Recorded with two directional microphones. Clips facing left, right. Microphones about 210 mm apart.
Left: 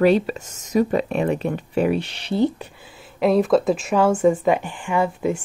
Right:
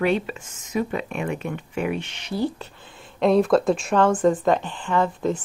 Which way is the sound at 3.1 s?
5° left (ahead or behind).